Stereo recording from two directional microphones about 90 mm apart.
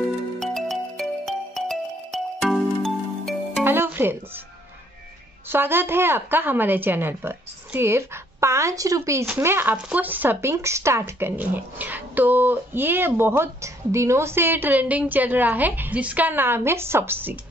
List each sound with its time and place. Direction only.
0.4 s music: 5° left (ahead or behind)
3.6 s music: 25° right (ahead or behind)
5.5 s speech: 25° right (ahead or behind)
9.4 s speech: 25° right (ahead or behind)